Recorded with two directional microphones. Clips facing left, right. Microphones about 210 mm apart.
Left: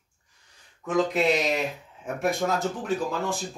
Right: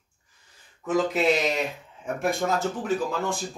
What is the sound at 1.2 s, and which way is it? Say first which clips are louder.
Speech: even; centre (ahead or behind).